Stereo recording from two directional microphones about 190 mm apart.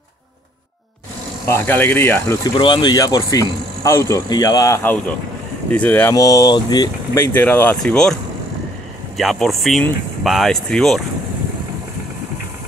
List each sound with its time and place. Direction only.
1.5 s speech: 10° left (ahead or behind)
7.3 s speech: 10° left (ahead or behind)